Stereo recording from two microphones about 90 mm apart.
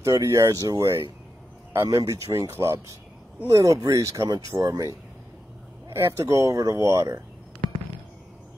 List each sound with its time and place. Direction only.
0.0 s speech: 40° right (ahead or behind)
6.5 s speech: 45° right (ahead or behind)